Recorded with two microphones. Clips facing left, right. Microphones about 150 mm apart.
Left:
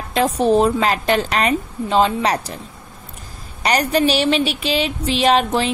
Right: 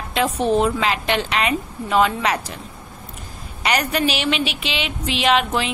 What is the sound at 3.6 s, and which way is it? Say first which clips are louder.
A woman's voice: left 4 dB; 35° left (ahead or behind).